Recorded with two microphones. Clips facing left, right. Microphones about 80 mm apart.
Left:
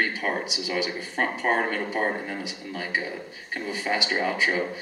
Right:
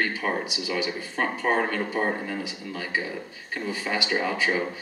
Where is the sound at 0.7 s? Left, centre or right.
Left.